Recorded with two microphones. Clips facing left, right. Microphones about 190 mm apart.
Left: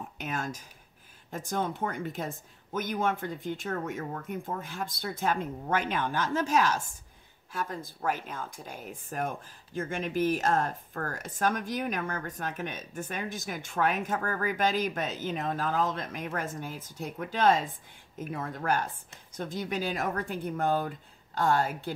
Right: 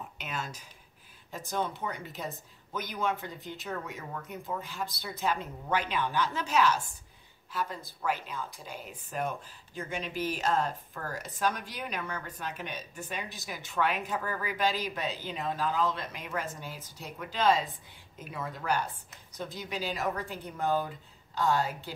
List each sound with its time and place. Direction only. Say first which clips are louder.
0.2 s a woman's voice: left 5 dB; 50° left (ahead or behind)